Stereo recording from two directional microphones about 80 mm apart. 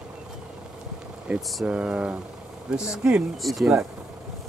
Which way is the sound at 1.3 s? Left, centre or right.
Centre.